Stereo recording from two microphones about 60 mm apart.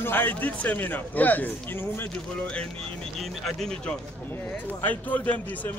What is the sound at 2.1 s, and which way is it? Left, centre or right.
Speech, centre.